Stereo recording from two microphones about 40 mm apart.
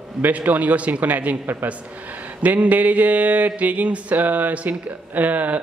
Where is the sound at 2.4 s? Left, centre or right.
Right.